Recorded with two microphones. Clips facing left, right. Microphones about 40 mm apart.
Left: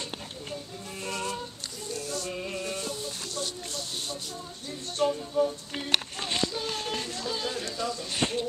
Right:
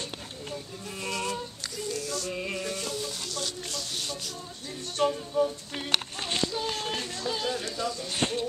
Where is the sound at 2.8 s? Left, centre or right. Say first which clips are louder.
Right 1 dB; right.